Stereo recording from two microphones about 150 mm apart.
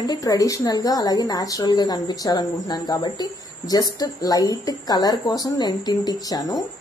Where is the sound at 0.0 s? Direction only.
25° left (ahead or behind).